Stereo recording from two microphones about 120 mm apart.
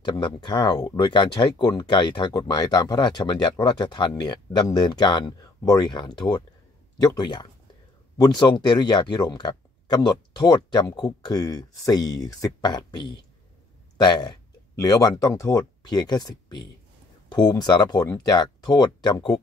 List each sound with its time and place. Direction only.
0.0 s speech: 40° left (ahead or behind)